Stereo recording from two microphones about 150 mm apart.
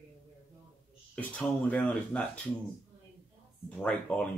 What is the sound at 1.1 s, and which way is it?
Speech, 10° left (ahead or behind).